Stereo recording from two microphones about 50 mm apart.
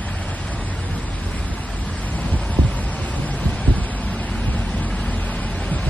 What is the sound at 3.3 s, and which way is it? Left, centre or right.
Heart sounds, left.